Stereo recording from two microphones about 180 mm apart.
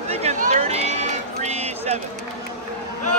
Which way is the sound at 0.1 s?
40° right (ahead or behind).